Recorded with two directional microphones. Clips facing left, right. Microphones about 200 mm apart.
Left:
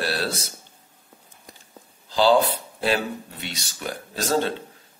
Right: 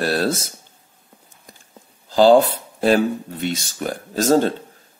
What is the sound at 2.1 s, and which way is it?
Speech, 45° right (ahead or behind).